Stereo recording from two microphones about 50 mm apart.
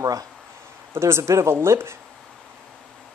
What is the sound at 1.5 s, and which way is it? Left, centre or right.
Speech, right.